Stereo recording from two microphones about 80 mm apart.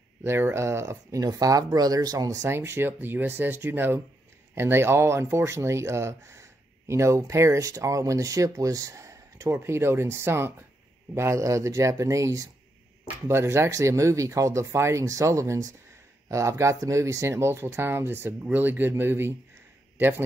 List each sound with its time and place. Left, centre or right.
0.2 s a man's voice: right